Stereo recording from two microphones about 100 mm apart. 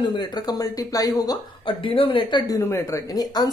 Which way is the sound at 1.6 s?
60° left (ahead or behind).